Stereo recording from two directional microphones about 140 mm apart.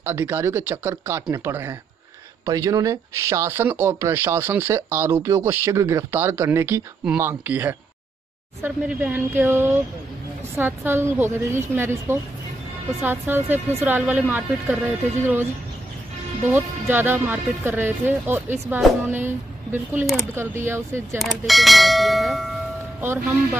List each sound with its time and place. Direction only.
0.0 s speech: 15° right (ahead or behind)
16.4 s speech: 15° right (ahead or behind)
21.2 s speech: centre (ahead or behind)